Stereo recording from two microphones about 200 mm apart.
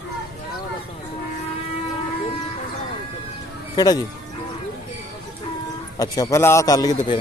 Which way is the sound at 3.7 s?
20° left (ahead or behind).